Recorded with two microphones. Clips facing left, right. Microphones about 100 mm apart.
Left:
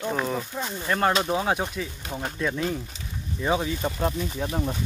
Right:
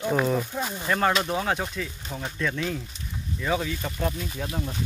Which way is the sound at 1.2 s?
15° left (ahead or behind).